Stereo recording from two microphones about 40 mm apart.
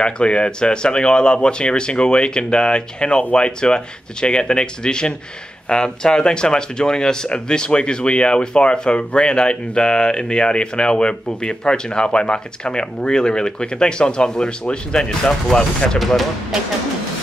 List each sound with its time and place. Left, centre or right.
0.0 s speech: left